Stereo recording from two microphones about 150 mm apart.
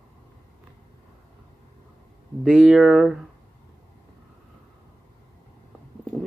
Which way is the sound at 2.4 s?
Centre (ahead or behind).